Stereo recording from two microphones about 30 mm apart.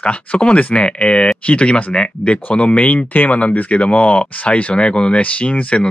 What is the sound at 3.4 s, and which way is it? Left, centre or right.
Speech, left.